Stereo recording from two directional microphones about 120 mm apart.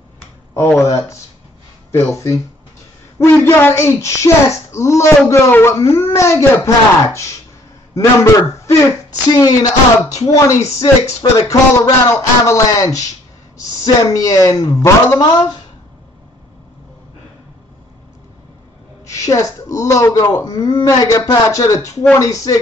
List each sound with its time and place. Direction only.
0.7 s speech: 25° left (ahead or behind)
14.1 s speech: 25° left (ahead or behind)
19.0 s speech: 25° left (ahead or behind)